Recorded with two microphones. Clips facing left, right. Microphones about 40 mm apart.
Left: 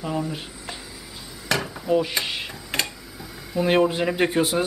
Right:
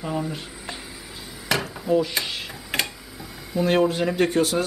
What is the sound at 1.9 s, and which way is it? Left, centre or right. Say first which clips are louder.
Speech: even; centre.